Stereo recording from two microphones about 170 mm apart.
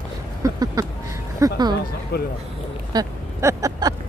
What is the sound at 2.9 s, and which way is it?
Vehicle, 20° right (ahead or behind).